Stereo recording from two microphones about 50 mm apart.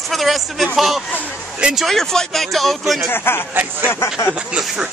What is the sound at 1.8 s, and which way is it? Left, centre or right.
Speech, centre.